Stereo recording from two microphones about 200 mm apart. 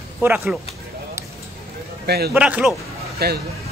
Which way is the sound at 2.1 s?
55° right (ahead or behind).